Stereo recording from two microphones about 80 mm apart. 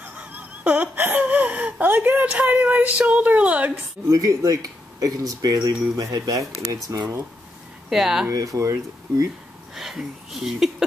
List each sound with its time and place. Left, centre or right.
0.0 s a sound: centre
0.9 s speech: right
4.1 s speech: right
7.9 s speech: centre
8.3 s speech: right
9.8 s speech: centre